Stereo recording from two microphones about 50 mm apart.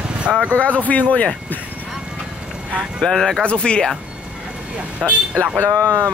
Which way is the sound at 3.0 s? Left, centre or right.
Centre.